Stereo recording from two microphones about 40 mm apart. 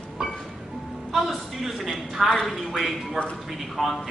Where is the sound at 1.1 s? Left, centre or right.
Centre.